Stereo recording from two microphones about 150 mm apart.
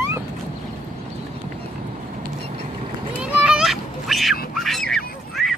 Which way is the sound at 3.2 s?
5° right (ahead or behind).